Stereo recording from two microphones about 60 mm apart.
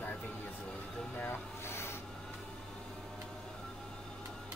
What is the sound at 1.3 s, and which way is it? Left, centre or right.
Vehicle, left.